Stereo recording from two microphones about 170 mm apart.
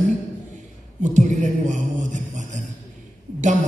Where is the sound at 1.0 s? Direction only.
45° right (ahead or behind).